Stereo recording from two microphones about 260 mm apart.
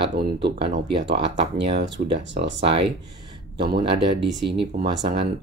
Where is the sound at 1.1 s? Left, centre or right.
Right.